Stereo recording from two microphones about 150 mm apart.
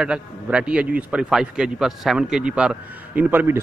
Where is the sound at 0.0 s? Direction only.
5° right (ahead or behind).